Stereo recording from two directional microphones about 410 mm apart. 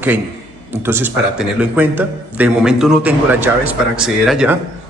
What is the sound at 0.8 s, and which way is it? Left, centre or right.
A man's voice, centre.